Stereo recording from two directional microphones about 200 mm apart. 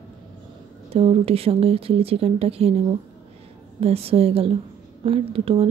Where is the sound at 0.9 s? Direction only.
30° right (ahead or behind).